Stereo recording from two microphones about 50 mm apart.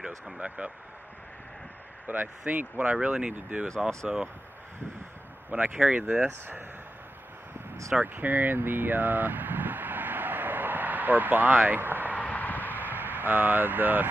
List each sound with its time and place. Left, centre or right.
0.0 s speech: right
2.1 s speech: right
5.5 s speech: right
8.0 s vehicle: right
12.2 s a sound: left
12.7 s a sound: right